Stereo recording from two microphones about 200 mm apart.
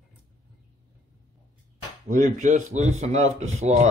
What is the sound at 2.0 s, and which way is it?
A man's voice, 40° right (ahead or behind).